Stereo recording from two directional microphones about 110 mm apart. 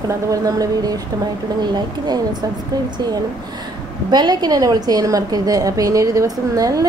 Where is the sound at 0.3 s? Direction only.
35° right (ahead or behind).